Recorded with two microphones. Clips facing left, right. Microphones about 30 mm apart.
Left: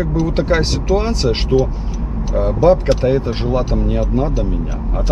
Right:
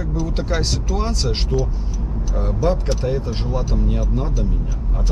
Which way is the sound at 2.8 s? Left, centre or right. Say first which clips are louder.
Left 8 dB; left.